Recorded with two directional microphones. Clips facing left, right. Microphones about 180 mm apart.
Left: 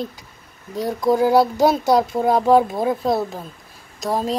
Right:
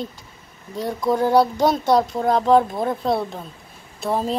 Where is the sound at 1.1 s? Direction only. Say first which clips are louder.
Left 2 dB; 5° left (ahead or behind).